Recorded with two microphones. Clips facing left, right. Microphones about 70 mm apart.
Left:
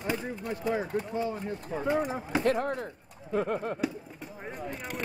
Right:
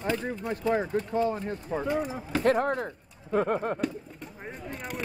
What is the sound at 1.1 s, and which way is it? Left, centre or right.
Speech, right.